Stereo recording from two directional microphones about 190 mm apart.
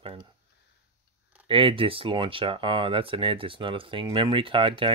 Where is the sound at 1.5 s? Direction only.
30° right (ahead or behind).